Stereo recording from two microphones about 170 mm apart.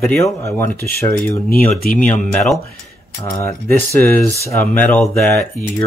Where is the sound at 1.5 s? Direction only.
55° left (ahead or behind).